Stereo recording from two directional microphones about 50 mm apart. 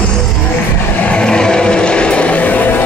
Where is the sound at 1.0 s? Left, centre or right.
Centre.